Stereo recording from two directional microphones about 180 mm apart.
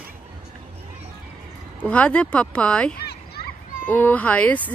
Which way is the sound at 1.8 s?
5° left (ahead or behind).